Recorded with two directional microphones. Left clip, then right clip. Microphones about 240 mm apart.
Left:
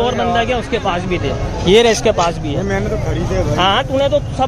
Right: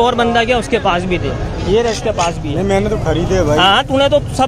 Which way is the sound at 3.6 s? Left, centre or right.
Centre.